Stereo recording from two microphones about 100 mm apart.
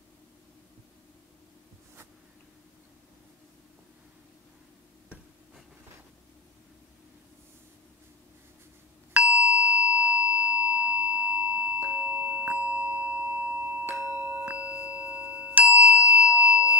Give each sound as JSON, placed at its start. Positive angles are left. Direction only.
{"t": 9.1, "sound": "ding", "side_deg": -15}
{"t": 14.1, "sound": "singing bowl", "side_deg": -15}
{"t": 15.3, "sound": "a sound", "side_deg": -15}